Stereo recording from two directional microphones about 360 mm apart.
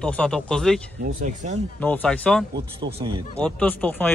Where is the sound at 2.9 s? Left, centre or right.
Centre.